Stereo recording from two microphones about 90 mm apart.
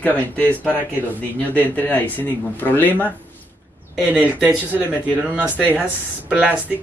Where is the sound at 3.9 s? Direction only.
15° right (ahead or behind).